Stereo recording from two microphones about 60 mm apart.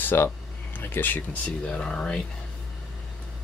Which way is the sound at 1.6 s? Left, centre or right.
Centre.